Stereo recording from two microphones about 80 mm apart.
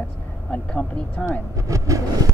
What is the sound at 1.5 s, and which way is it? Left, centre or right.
Speech, right.